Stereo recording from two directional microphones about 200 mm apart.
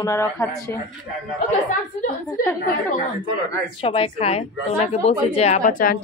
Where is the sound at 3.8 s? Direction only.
30° left (ahead or behind).